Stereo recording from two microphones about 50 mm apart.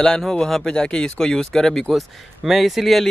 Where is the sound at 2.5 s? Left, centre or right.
Centre.